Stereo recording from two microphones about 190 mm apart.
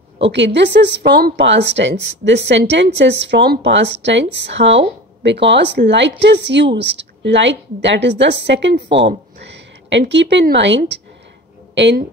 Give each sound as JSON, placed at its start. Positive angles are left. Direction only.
{"t": 0.2, "sound": "speech", "side_deg": -70}
{"t": 8.8, "sound": "speech", "side_deg": -30}
{"t": 9.4, "sound": "speech", "side_deg": -70}